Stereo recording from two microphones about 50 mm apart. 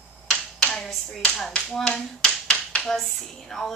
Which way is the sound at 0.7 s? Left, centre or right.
Centre.